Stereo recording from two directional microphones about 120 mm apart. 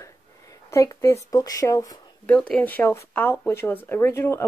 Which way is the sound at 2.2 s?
10° left (ahead or behind).